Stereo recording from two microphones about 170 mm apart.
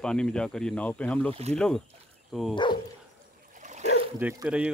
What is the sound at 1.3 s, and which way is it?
Speech, 40° right (ahead or behind).